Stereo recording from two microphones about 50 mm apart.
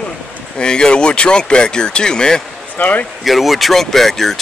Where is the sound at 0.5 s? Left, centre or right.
Centre.